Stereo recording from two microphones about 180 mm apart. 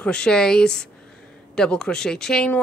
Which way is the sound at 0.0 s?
5° left (ahead or behind).